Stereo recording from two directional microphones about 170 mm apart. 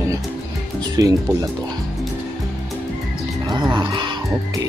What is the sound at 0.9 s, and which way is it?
Speech, 20° right (ahead or behind).